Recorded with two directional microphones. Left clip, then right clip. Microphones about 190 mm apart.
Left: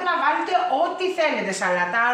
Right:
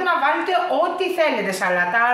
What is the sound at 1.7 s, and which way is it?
Speech, 35° right (ahead or behind).